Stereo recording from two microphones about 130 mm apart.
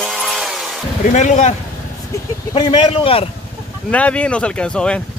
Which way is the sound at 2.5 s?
35° left (ahead or behind).